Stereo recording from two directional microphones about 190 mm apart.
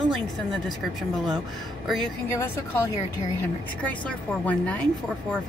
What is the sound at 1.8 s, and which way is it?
Speech, centre (ahead or behind).